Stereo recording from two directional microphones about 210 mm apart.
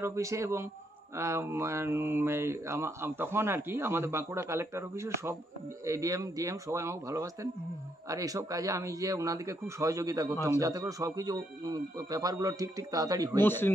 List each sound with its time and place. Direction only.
0.0 s speech: 15° right (ahead or behind)
13.4 s speech: 10° left (ahead or behind)